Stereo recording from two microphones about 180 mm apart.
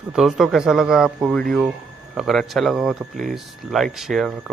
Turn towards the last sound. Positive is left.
turn(degrees=0)  # may be behind; listen again after turning